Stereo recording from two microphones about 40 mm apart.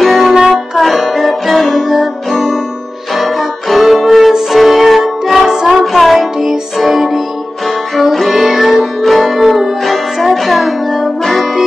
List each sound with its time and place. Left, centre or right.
0.0 s music: centre
0.3 s music: centre
0.7 s music: centre
3.2 s music: centre
5.9 s music: centre